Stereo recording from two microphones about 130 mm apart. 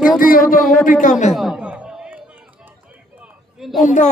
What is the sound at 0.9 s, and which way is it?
Speech, 75° left (ahead or behind).